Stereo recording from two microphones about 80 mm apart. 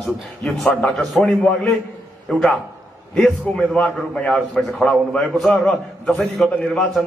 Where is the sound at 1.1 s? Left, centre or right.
Centre.